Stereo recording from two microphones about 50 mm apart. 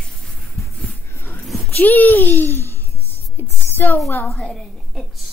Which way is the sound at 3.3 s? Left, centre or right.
Left.